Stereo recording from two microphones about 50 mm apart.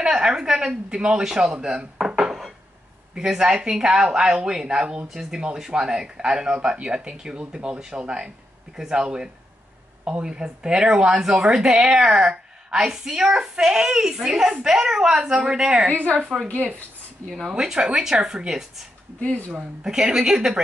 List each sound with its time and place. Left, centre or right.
0.0 s speech: centre
16.2 s a woman's voice: centre
17.5 s speech: centre
19.1 s speech: left
19.5 s speech: centre